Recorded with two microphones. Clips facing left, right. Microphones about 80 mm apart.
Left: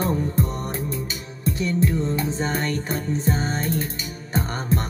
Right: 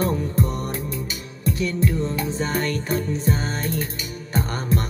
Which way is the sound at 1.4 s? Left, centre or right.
Left.